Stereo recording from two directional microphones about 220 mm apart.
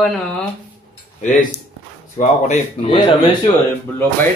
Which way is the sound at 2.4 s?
25° left (ahead or behind).